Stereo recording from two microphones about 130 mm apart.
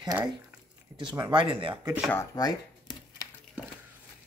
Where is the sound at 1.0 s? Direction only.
35° right (ahead or behind).